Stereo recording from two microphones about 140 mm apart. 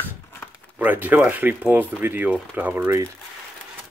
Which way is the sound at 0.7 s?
10° right (ahead or behind).